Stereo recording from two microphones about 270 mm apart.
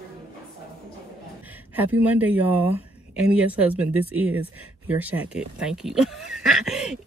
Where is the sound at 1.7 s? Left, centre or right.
Centre.